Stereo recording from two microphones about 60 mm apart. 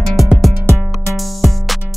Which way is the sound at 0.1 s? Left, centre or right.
Centre.